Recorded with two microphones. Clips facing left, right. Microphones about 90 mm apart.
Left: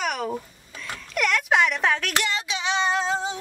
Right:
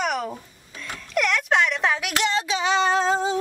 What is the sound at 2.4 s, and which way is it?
Child singing, 40° right (ahead or behind).